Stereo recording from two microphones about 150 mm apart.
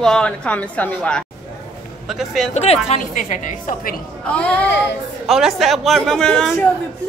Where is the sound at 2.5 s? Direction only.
45° left (ahead or behind).